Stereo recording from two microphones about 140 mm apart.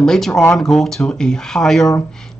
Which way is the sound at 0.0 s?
5° left (ahead or behind).